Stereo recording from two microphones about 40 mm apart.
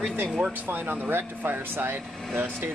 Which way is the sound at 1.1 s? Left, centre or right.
Right.